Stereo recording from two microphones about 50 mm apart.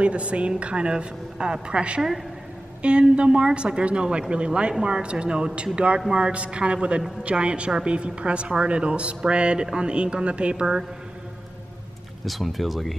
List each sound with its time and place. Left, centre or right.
0.0 s speech: right
12.3 s speech: centre